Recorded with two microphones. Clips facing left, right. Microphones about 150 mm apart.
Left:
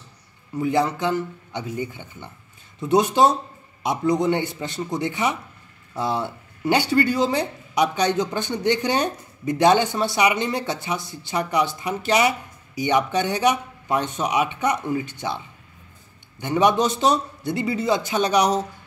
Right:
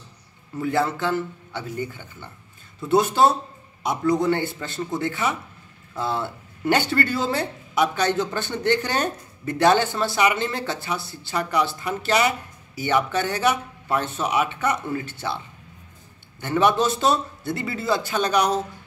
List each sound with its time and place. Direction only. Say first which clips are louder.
0.6 s speech: left 2 dB; 15° left (ahead or behind)